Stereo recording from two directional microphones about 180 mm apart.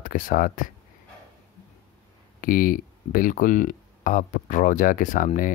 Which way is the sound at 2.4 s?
50° left (ahead or behind).